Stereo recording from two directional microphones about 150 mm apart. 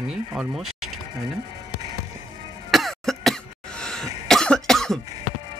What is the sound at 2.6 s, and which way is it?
Cough, centre (ahead or behind).